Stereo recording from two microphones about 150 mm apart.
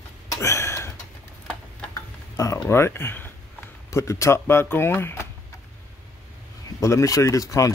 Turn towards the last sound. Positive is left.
turn(degrees=20)  # may be behind; listen again after turning